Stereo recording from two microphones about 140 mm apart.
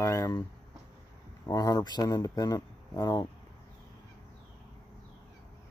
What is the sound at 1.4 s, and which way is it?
Speech, 25° left (ahead or behind).